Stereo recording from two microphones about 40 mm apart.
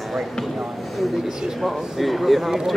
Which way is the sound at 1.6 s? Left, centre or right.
Centre.